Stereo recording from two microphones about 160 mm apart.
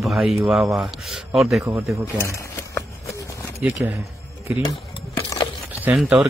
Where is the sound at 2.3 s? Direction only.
20° left (ahead or behind).